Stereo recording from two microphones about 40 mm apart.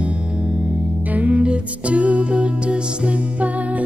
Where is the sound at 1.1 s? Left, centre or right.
Right.